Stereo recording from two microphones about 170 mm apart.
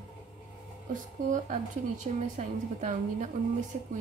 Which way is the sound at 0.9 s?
50° right (ahead or behind).